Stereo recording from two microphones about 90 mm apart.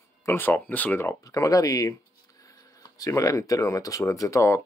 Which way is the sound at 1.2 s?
40° left (ahead or behind).